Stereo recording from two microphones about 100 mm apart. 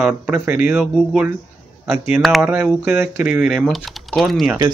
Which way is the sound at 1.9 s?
Centre (ahead or behind).